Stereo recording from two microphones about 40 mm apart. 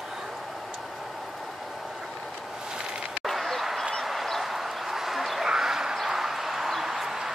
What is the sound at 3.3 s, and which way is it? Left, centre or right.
Basketball bounce, centre.